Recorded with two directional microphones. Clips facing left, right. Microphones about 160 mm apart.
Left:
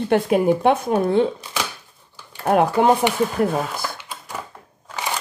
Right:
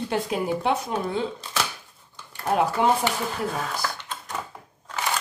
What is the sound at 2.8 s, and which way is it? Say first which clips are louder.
Speech: left 5 dB; 55° left (ahead or behind).